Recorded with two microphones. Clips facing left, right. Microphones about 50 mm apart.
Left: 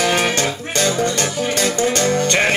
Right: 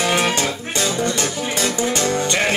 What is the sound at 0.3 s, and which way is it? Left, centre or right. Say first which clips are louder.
Music: left 1 dB; left.